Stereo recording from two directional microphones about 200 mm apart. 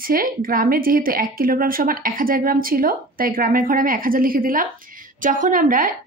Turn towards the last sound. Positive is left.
turn(degrees=-40)  # may be behind; listen again after turning